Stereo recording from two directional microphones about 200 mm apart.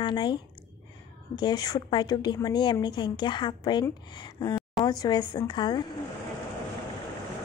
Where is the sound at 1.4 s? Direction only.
20° left (ahead or behind).